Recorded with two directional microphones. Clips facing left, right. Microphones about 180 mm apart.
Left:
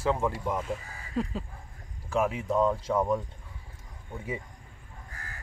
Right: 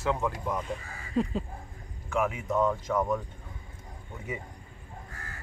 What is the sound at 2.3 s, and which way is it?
Speech, 30° left (ahead or behind).